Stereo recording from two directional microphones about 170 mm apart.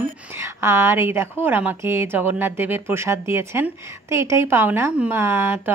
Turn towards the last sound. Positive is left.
turn(degrees=-15)  # may be behind; listen again after turning